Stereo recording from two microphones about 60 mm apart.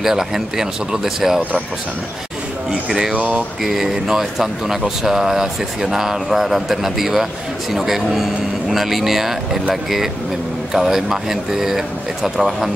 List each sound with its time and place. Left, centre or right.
0.0 s speech: centre
2.9 s speech: centre
3.2 s speech: right
3.6 s speech: centre
10.7 s speech: centre